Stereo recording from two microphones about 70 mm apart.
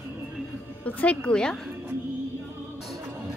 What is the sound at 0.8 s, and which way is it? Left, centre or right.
Speech, centre.